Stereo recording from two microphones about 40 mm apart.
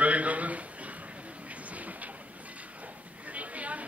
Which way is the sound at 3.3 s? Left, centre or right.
Right.